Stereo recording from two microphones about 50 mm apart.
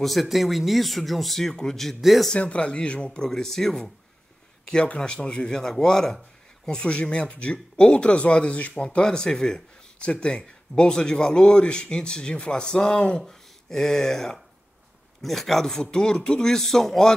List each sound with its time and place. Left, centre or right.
0.0 s speech: centre
1.5 s speech: centre
2.0 s speech: centre
2.3 s speech: left
4.8 s speech: centre
13.2 s speech: centre